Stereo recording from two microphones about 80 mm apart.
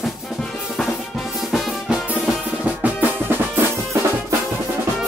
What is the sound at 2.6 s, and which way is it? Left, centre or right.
Music, centre.